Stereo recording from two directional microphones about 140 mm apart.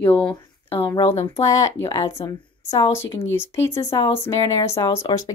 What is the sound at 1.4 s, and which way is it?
Speech, 25° left (ahead or behind).